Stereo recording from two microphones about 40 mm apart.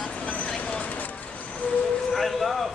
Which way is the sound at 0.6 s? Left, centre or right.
Left.